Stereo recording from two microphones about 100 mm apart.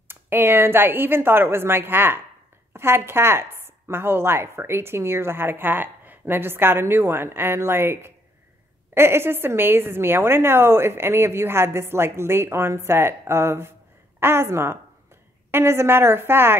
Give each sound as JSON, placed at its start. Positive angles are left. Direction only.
{"t": 0.1, "sound": "a woman's voice", "side_deg": -20}